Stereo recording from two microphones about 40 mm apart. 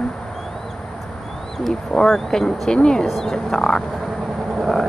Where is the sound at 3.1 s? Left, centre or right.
Centre.